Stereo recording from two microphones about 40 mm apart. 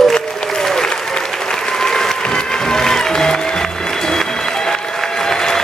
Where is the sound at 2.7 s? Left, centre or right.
Centre.